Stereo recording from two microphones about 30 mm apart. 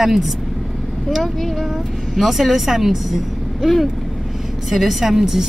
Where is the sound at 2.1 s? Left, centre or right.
Centre.